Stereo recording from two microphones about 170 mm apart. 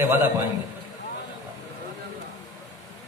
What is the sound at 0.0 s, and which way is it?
Speech, 15° right (ahead or behind).